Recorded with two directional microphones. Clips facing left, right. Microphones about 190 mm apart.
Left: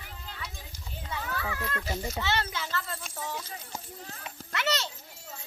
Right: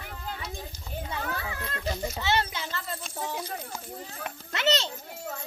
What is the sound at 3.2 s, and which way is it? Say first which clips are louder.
Speech: right 5 dB; 60° right (ahead or behind).